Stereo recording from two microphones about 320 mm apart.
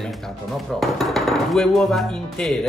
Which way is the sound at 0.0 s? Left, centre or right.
Centre.